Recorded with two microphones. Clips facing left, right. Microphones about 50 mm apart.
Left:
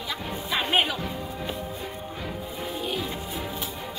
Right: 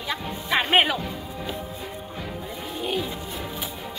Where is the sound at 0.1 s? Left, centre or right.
Right.